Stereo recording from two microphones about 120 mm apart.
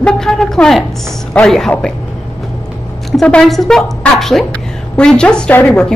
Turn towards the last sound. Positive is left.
turn(degrees=10)  # may be behind; listen again after turning